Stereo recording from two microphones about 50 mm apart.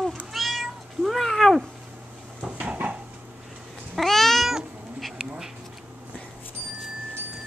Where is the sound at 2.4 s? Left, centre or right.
Right.